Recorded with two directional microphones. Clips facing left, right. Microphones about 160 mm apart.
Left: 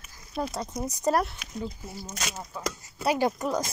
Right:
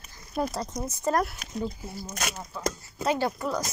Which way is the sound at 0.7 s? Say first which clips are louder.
Left 2 dB; 15° left (ahead or behind).